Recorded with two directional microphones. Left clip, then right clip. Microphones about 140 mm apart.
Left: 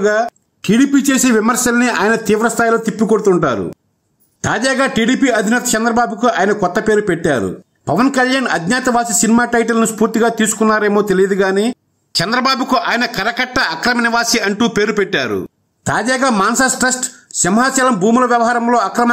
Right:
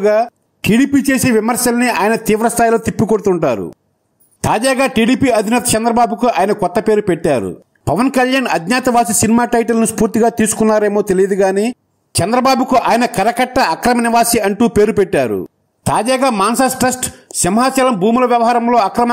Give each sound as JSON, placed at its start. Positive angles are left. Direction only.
{"t": 0.0, "sound": "speech", "side_deg": -30}
{"t": 2.4, "sound": "speech", "side_deg": -35}
{"t": 15.8, "sound": "speech", "side_deg": -25}